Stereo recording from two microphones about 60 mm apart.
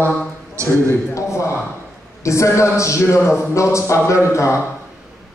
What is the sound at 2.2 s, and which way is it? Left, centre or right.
A man's voice, left.